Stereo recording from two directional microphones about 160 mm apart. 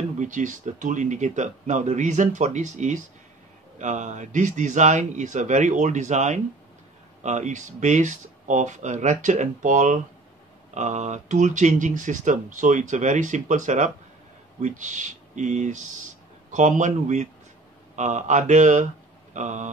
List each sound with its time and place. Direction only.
0.2 s speech: 55° right (ahead or behind)